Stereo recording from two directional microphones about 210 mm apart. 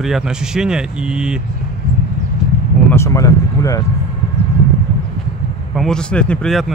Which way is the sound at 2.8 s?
10° left (ahead or behind).